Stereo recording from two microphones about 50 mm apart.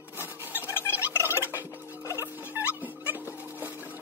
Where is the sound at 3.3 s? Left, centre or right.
Right.